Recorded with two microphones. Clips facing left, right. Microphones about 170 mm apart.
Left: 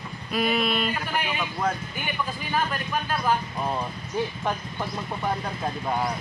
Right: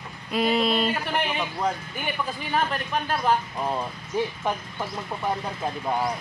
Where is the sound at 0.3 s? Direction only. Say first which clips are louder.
Right 2 dB; 25° right (ahead or behind).